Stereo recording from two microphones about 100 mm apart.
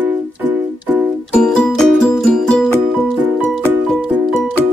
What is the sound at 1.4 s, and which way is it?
Music, 5° left (ahead or behind).